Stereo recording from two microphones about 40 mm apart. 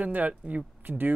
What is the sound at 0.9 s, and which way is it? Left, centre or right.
Speech, right.